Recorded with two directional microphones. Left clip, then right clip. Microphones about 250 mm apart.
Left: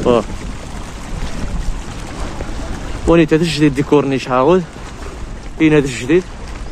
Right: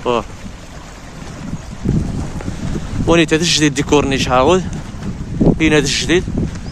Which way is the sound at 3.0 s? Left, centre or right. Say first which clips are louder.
Left 1 dB; centre.